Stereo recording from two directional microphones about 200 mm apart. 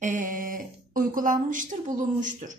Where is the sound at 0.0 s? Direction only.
40° right (ahead or behind).